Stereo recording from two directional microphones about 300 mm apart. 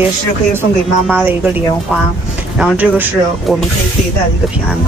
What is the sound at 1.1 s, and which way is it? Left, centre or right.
Speech, centre.